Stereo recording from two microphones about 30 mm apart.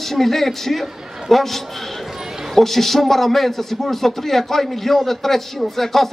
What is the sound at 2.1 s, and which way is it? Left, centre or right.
Basketball bounce, centre.